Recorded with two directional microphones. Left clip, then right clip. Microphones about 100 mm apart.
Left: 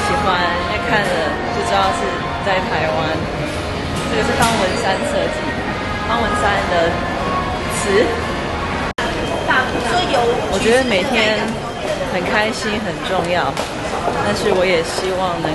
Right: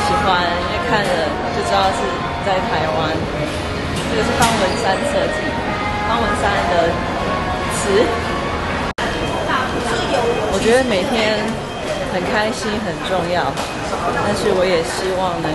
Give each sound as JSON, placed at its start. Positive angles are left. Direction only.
{"t": 0.1, "sound": "music", "side_deg": -15}
{"t": 9.9, "sound": "speech", "side_deg": 15}